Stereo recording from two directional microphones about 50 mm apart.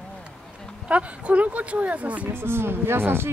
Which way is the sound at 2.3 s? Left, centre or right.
Right.